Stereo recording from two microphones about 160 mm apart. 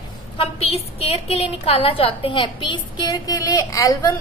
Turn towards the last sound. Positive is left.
turn(degrees=20)  # may be behind; listen again after turning